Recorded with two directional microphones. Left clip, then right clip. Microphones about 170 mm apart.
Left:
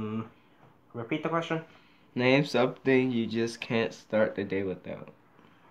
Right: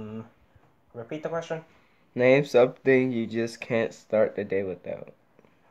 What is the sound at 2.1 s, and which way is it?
Speech, 50° right (ahead or behind).